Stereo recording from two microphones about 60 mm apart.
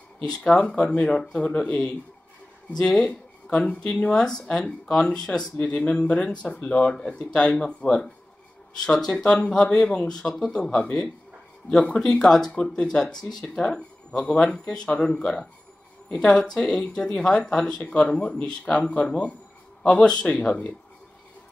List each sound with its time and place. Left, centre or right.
0.4 s speech: centre
12.3 s speech: centre
12.5 s speech: centre